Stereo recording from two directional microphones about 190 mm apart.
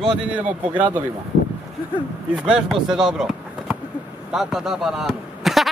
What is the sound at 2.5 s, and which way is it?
Speech, centre (ahead or behind).